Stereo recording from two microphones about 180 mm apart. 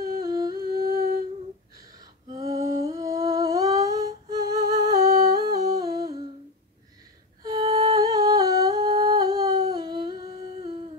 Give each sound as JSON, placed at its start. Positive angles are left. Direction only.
{"t": 0.2, "sound": "humming", "side_deg": -20}
{"t": 0.7, "sound": "humming", "side_deg": -60}
{"t": 2.3, "sound": "humming", "side_deg": -20}
{"t": 7.4, "sound": "humming", "side_deg": -20}